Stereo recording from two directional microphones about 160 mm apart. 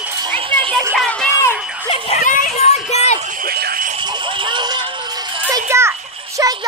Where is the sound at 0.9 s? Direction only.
5° left (ahead or behind).